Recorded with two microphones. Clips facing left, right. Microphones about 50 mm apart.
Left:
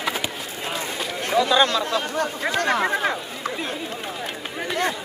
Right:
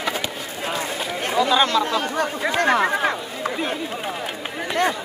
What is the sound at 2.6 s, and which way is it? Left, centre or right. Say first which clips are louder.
Speech: right 3 dB; right.